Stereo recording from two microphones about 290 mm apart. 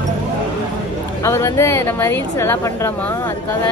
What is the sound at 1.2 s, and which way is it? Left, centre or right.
Speech, centre.